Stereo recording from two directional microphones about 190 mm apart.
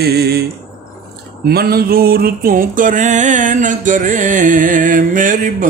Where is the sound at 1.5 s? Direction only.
55° right (ahead or behind).